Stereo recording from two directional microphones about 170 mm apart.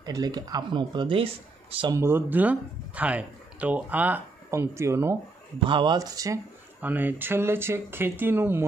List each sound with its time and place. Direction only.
0.0 s speech: 25° right (ahead or behind)
2.0 s speech: 15° right (ahead or behind)
5.7 s speech: 30° right (ahead or behind); by 8.6 s 10° right (ahead or behind)